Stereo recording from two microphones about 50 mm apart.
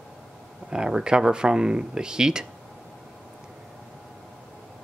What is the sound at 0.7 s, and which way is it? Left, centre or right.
Speech, centre.